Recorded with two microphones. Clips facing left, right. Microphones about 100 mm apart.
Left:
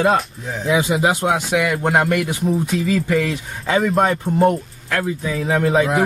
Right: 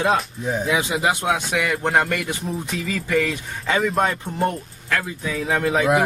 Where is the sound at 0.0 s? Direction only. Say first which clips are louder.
Left 3 dB; centre (ahead or behind).